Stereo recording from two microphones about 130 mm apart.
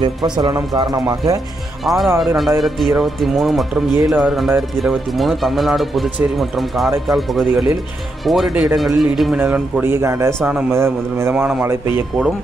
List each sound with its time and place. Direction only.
0.0 s speech: 35° right (ahead or behind)
1.9 s speech: centre (ahead or behind)
9.4 s a man's voice: 15° right (ahead or behind)